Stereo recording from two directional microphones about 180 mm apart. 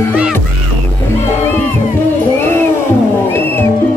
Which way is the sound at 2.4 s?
10° left (ahead or behind).